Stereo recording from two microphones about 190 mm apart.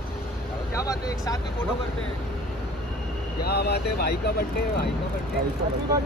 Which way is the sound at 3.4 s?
60° left (ahead or behind).